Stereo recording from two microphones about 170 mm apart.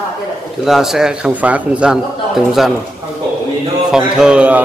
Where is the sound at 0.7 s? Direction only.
Centre (ahead or behind).